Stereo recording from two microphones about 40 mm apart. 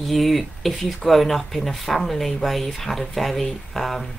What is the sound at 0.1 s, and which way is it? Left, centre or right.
Speech, centre.